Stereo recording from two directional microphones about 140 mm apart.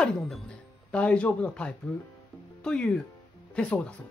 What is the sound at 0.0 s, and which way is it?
Speech, centre (ahead or behind).